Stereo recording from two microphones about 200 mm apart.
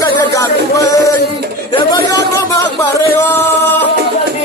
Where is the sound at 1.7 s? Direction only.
20° left (ahead or behind).